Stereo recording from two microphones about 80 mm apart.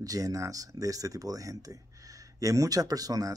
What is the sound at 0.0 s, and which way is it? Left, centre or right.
Speech, right.